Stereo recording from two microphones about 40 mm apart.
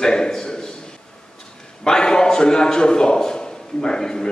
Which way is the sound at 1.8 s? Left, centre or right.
Centre.